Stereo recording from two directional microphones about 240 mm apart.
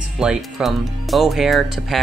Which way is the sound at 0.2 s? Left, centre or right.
Centre.